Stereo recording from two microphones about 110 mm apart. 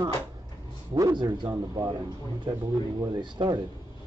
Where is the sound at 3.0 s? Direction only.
40° right (ahead or behind).